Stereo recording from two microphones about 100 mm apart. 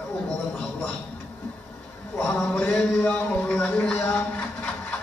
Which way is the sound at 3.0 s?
25° left (ahead or behind).